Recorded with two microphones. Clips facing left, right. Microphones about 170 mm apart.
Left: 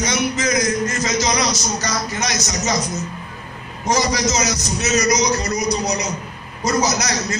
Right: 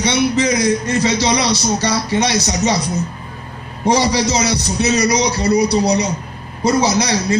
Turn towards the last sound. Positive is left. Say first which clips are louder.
# right 6 dB
turn(degrees=-30)  # may be behind; listen again after turning